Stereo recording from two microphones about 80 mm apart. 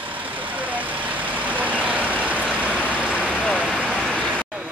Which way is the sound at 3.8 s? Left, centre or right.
Centre.